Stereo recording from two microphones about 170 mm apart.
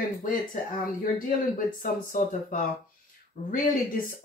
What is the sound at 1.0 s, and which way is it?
Speech, 55° left (ahead or behind).